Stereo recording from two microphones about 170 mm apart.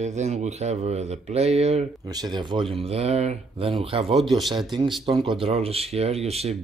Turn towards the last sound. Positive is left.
turn(degrees=-40)  # may be behind; listen again after turning